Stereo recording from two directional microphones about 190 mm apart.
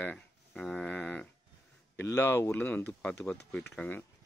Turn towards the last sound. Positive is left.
turn(degrees=10)  # may be behind; listen again after turning